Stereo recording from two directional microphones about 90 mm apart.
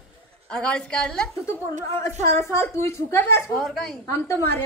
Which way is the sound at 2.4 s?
30° left (ahead or behind).